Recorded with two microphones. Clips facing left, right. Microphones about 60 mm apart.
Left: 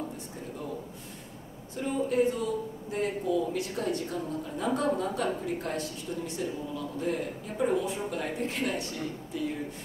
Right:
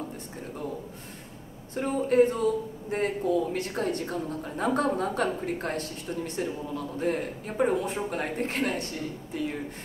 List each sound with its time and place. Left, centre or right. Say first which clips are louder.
1.8 s a man's voice: right 5 dB; right